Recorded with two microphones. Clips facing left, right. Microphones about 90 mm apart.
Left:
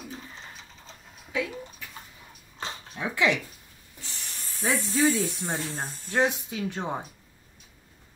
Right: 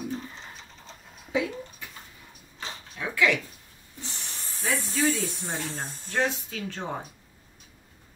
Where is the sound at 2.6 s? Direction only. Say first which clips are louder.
Left 2 dB; 20° left (ahead or behind).